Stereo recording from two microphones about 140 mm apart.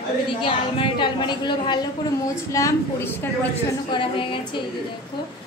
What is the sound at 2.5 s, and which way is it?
Speech, 20° left (ahead or behind).